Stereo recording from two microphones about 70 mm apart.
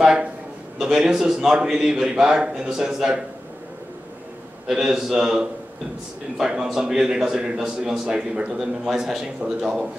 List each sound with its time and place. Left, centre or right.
0.0 s a man's voice: centre
4.6 s a man's voice: centre